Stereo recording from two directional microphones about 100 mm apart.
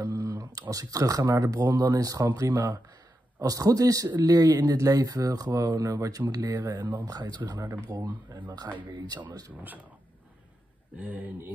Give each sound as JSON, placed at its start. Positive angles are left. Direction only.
{"t": 0.0, "sound": "speech", "side_deg": -35}
{"t": 11.0, "sound": "speech", "side_deg": -15}